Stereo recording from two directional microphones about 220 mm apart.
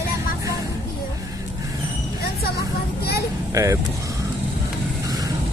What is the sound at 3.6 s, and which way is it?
Speech, 15° right (ahead or behind).